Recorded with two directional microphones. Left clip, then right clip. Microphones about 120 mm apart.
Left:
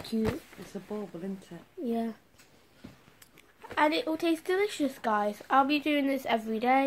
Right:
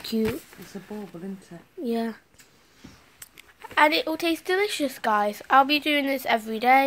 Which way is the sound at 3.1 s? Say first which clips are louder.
Right 8 dB; 15° right (ahead or behind).